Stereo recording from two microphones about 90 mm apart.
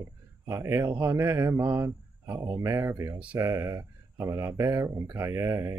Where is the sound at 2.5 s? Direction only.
35° right (ahead or behind).